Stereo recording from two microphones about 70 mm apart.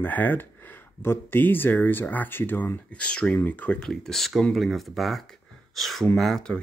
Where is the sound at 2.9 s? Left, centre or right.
Centre.